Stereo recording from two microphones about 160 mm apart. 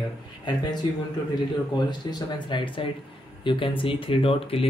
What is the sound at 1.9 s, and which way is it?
Speech, 25° left (ahead or behind).